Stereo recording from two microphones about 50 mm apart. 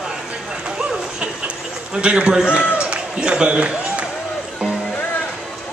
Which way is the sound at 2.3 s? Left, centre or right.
Centre.